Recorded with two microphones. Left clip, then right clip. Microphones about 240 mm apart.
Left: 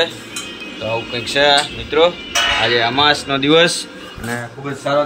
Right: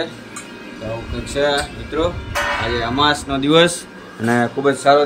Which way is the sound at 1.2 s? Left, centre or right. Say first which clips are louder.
Left 5 dB; centre.